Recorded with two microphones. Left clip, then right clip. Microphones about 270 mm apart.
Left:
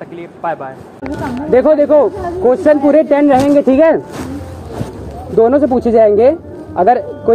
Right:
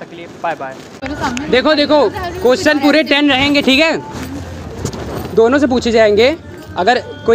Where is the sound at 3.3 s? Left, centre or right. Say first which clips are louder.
Left 2 dB; centre.